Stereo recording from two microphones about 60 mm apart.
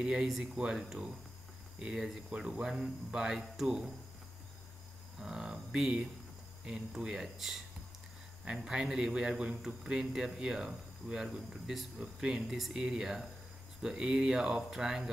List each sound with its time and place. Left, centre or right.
0.0 s speech: centre
2.2 s speech: centre
5.2 s speech: centre